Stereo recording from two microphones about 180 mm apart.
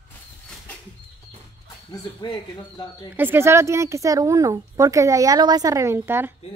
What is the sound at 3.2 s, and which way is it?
Speech, 15° right (ahead or behind).